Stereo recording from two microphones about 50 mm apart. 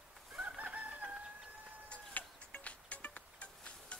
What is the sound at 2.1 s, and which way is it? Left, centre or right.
Music, left.